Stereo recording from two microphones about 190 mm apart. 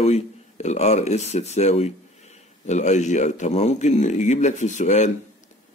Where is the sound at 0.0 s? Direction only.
35° left (ahead or behind).